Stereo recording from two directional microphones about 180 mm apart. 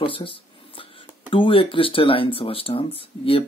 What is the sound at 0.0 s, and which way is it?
Speech, 30° left (ahead or behind).